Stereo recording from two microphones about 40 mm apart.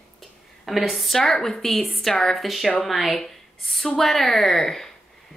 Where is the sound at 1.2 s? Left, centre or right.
Centre.